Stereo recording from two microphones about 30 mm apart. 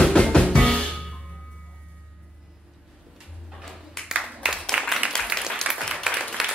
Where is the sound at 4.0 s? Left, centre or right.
Centre.